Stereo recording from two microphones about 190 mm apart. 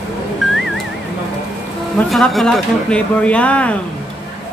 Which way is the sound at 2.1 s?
Centre (ahead or behind).